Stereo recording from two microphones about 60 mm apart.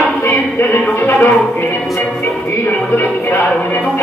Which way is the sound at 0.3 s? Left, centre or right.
Left.